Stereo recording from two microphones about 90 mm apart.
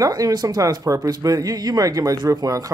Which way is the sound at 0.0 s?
45° right (ahead or behind).